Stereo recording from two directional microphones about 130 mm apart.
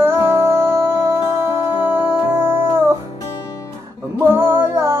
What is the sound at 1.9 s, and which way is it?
Music, 15° right (ahead or behind).